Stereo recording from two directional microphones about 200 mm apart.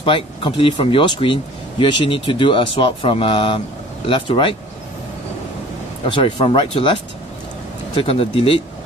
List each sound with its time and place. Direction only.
0.0 s speech: 25° left (ahead or behind)
6.0 s speech: 25° left (ahead or behind)